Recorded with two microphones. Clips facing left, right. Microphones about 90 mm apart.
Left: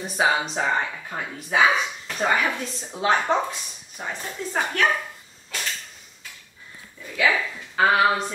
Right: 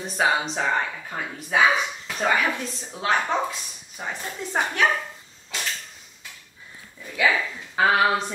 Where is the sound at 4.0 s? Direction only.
Centre (ahead or behind).